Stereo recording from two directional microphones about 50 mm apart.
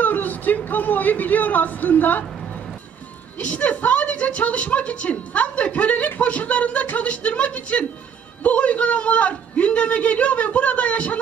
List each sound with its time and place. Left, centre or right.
0.0 s speech: left
3.3 s a woman's voice: left